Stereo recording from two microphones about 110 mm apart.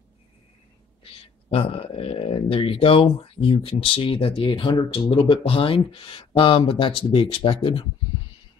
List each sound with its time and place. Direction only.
1.0 s speech: 55° left (ahead or behind)